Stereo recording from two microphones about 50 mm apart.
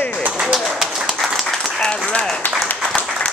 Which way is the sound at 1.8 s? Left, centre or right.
Centre.